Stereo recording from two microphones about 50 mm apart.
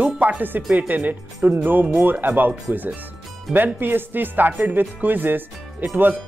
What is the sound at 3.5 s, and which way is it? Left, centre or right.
Speech, right.